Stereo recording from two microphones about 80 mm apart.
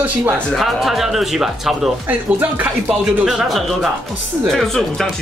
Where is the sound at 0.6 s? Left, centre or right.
Centre.